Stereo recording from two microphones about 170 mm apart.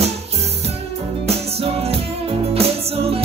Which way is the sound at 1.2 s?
35° right (ahead or behind).